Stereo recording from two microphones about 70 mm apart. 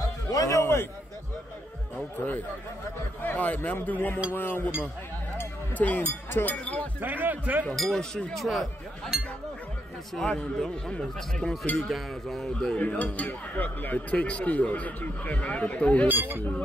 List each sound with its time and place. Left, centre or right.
0.3 s a sound: left
3.2 s a sound: left
3.8 s speech: left
5.8 s speech: left
7.0 s speech: right
7.7 s speech: centre
8.4 s speech: centre
12.7 s speech: left
16.1 s speech: right